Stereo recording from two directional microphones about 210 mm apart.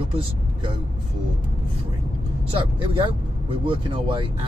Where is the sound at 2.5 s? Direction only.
25° right (ahead or behind).